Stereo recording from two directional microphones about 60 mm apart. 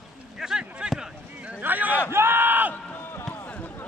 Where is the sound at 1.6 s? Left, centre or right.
Right.